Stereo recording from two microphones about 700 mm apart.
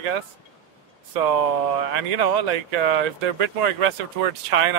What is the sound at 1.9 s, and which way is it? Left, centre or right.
Speech, right.